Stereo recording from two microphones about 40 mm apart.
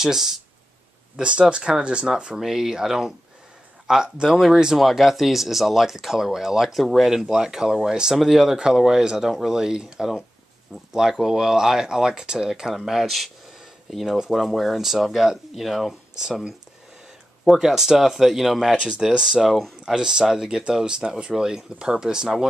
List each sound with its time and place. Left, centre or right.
0.0 s speech: centre
1.1 s speech: right
2.4 s speech: centre
10.9 s speech: centre
14.0 s speech: centre
14.3 s speech: centre
17.6 s speech: centre
18.8 s speech: right